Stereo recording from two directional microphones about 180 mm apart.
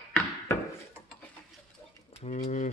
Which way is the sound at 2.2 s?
35° left (ahead or behind).